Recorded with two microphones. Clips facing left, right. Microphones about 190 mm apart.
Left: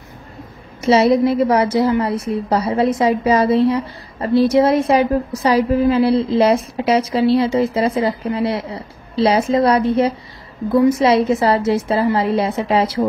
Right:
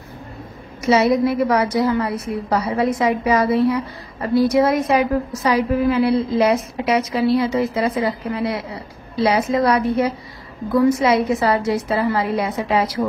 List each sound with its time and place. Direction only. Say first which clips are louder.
0.8 s a woman's voice: left 3 dB; 30° left (ahead or behind)